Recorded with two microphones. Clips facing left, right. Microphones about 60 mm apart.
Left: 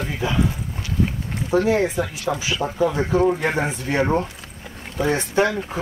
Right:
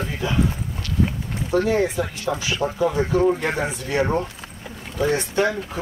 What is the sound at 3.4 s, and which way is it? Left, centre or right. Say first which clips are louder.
Speech: left 2 dB; left.